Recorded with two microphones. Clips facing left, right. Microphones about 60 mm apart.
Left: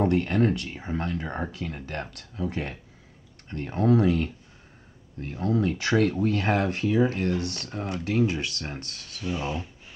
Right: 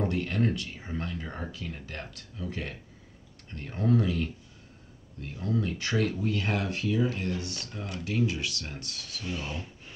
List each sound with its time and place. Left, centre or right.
0.0 s speech: left
5.5 s speech: left
9.2 s speech: centre